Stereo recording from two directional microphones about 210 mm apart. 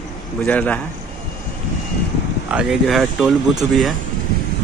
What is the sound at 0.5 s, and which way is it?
Speech, 5° left (ahead or behind).